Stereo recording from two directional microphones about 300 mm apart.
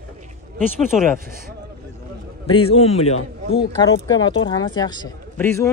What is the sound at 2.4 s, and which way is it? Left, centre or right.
Speech, centre.